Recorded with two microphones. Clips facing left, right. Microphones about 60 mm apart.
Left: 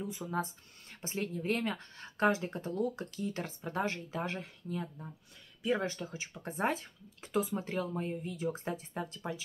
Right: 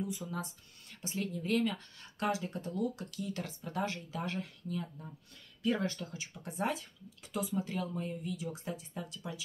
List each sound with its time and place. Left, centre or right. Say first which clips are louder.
0.0 s speech: left 2 dB; left